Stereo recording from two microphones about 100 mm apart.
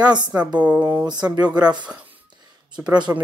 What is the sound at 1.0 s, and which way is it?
Speech, 45° right (ahead or behind).